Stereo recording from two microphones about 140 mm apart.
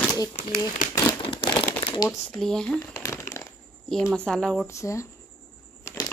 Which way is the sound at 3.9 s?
5° left (ahead or behind).